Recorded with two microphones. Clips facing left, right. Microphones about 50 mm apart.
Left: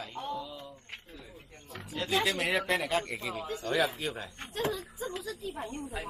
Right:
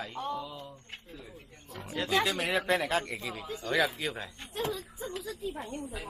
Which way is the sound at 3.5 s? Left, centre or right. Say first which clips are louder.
Even; centre.